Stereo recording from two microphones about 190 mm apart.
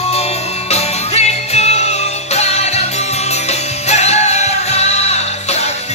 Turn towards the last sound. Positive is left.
turn(degrees=35)  # may be behind; listen again after turning